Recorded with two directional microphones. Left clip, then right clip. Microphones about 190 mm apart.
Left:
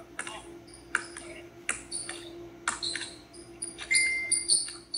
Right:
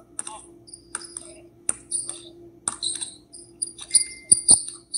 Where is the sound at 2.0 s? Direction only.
20° right (ahead or behind).